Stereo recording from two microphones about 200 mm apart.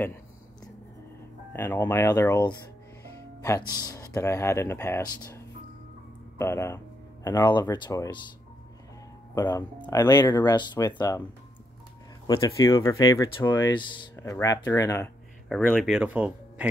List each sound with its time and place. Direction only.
1.5 s speech: 10° left (ahead or behind)
3.4 s speech: 15° left (ahead or behind)
9.3 s speech: 20° left (ahead or behind)
12.3 s speech: 15° left (ahead or behind)
15.4 s speech: centre (ahead or behind)